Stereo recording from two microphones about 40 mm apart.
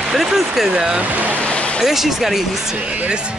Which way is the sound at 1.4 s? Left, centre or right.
Left.